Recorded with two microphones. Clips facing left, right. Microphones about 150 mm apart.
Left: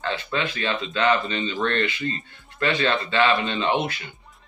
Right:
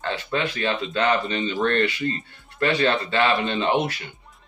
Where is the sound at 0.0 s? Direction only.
45° right (ahead or behind).